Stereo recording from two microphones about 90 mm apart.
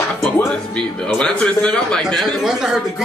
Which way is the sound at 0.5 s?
10° left (ahead or behind).